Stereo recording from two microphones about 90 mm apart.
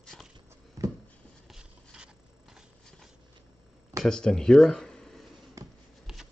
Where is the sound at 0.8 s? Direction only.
40° right (ahead or behind).